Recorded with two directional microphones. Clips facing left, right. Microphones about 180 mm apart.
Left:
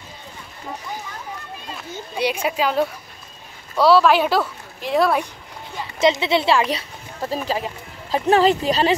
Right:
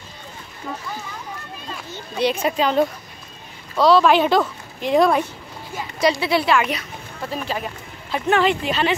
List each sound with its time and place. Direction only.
2.1 s a woman's voice: 10° left (ahead or behind)
5.9 s speech: 20° left (ahead or behind)